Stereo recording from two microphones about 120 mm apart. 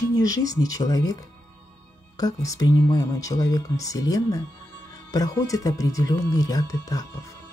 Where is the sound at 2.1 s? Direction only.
30° left (ahead or behind).